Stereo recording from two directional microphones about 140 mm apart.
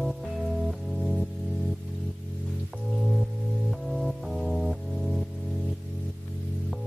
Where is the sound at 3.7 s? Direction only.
Centre (ahead or behind).